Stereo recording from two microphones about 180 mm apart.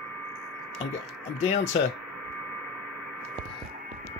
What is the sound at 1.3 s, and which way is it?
Speech, 35° left (ahead or behind).